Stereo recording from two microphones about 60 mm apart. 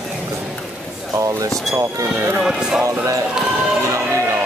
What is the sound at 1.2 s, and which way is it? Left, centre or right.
Speech, right.